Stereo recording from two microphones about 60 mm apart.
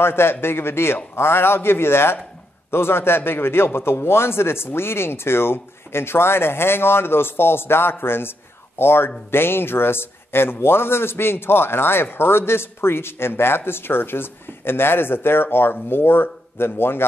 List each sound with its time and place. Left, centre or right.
0.0 s a man's voice: left